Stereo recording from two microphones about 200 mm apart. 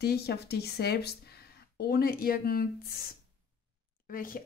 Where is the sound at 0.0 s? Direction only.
55° left (ahead or behind).